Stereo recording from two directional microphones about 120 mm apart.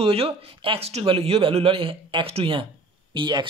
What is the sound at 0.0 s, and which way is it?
Speech, 50° right (ahead or behind).